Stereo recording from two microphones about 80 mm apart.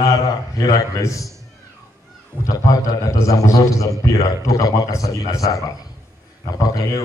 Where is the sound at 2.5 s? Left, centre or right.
Left.